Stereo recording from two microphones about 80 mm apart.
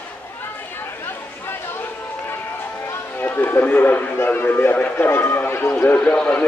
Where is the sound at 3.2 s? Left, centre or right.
Left.